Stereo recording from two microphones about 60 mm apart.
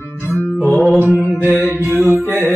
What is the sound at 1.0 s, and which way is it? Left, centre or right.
Music, right.